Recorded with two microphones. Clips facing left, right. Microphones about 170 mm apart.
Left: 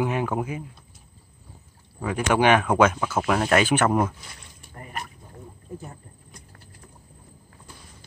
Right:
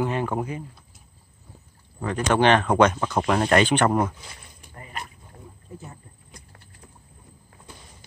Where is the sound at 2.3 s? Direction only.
10° left (ahead or behind).